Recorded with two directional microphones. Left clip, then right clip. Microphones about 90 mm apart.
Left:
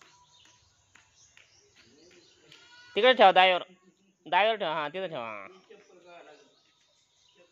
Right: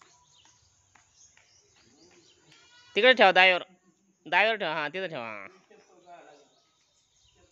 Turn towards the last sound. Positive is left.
turn(degrees=-65)  # may be behind; listen again after turning